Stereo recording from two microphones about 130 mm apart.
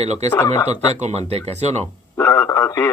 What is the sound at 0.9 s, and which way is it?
Speech, 55° right (ahead or behind).